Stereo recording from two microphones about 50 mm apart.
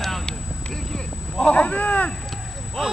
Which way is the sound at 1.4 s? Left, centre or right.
Left.